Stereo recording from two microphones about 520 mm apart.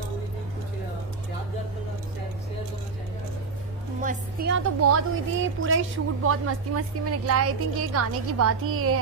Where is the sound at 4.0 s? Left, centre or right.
Centre.